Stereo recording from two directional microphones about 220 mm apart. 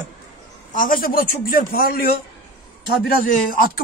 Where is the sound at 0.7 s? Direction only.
40° left (ahead or behind).